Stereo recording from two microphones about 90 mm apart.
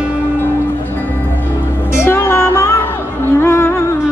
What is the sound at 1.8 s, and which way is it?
Music, 30° left (ahead or behind).